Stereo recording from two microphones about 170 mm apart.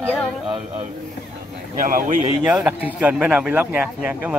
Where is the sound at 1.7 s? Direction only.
55° right (ahead or behind).